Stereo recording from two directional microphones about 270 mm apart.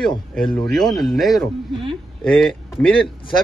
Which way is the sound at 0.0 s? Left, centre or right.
Centre.